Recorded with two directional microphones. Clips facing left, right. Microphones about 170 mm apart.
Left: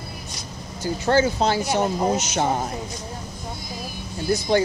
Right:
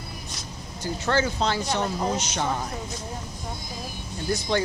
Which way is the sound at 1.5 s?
10° left (ahead or behind).